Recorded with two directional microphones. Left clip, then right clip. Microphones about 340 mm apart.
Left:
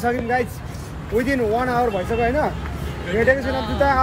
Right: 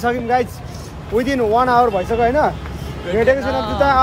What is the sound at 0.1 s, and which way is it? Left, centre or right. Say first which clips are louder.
Speech: right 4 dB; centre.